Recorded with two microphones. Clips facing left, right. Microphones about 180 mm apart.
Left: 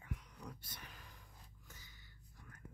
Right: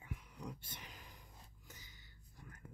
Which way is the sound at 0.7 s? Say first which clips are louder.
Right 1 dB; 20° right (ahead or behind).